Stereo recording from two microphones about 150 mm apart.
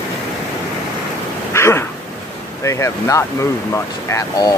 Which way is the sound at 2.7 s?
20° left (ahead or behind).